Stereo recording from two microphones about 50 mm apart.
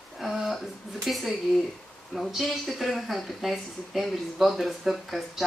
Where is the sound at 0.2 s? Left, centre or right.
Centre.